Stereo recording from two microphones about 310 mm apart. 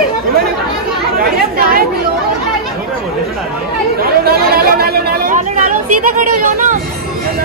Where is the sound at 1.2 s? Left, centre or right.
Right.